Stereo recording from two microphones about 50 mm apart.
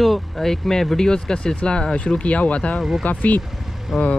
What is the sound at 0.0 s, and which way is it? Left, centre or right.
Speech, centre.